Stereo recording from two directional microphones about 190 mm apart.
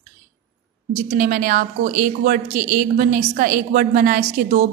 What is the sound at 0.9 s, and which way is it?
A woman's voice, 35° right (ahead or behind).